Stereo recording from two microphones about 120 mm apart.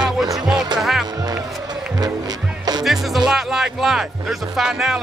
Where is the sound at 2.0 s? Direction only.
35° right (ahead or behind).